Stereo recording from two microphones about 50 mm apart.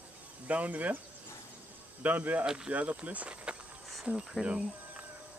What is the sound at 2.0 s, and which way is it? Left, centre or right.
Speech, right.